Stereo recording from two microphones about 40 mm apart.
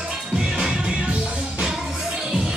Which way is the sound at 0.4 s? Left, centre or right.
Right.